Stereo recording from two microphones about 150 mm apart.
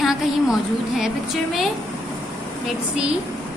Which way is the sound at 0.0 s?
5° right (ahead or behind).